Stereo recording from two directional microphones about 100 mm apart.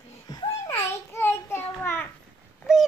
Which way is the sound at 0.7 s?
30° left (ahead or behind).